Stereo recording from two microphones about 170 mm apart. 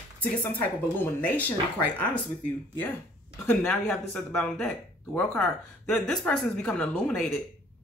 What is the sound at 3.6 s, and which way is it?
A woman's voice, 5° left (ahead or behind).